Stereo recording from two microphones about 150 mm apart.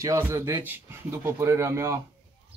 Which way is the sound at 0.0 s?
20° right (ahead or behind).